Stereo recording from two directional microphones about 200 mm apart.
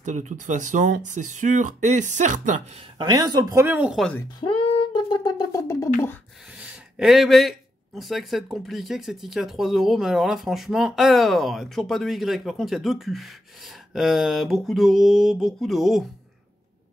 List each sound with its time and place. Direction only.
0.0 s speech: 35° right (ahead or behind)
3.0 s speech: 20° right (ahead or behind); by 4.2 s centre (ahead or behind)
4.2 s speech: 25° left (ahead or behind)
6.5 s speech: 5° right (ahead or behind)